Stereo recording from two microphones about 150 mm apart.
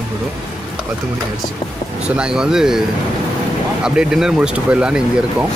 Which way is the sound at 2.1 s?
5° right (ahead or behind).